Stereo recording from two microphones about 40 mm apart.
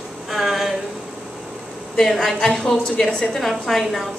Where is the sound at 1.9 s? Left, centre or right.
Centre.